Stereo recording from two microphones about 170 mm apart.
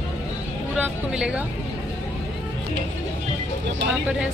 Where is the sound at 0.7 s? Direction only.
10° right (ahead or behind).